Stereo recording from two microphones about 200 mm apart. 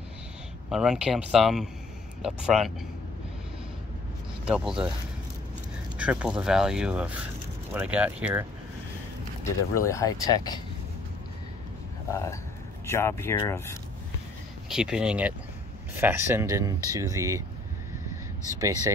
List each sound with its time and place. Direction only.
0.7 s speech: centre (ahead or behind)
4.5 s speech: 5° right (ahead or behind)
5.9 s speech: 5° right (ahead or behind)
9.4 s speech: 15° left (ahead or behind)
12.1 s speech: 15° left (ahead or behind)
14.7 s speech: 5° right (ahead or behind)
18.1 s a sound: 15° right (ahead or behind)